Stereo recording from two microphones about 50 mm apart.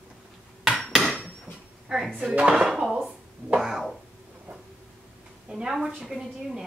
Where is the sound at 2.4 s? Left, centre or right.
Centre.